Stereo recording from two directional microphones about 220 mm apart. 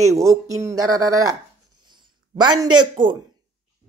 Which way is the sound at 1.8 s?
20° right (ahead or behind).